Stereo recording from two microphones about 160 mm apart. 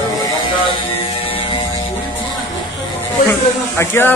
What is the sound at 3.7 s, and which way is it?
Speech, 15° left (ahead or behind).